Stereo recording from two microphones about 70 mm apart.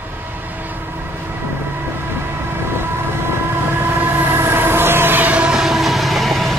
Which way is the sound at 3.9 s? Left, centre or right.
Right.